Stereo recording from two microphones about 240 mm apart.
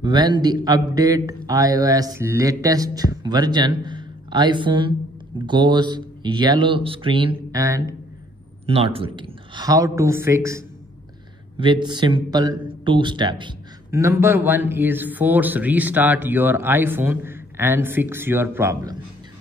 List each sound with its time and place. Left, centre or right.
0.0 s a man's voice: centre